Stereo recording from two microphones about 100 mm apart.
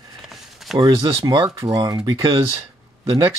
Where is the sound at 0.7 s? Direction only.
45° right (ahead or behind).